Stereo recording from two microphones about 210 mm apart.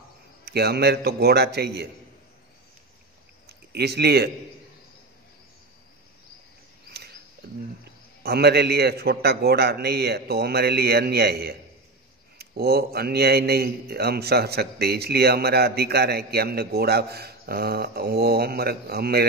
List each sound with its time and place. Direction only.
0.5 s a man's voice: 50° right (ahead or behind)
3.4 s a man's voice: 50° right (ahead or behind)
6.9 s a sound: 50° right (ahead or behind)
7.4 s a man's voice: 50° right (ahead or behind)